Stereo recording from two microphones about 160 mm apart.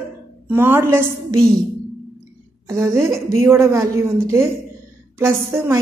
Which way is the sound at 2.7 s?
15° right (ahead or behind).